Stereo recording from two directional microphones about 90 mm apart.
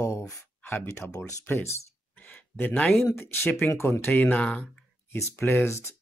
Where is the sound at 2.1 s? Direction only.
20° left (ahead or behind).